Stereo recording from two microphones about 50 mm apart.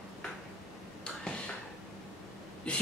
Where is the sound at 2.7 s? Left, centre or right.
Left.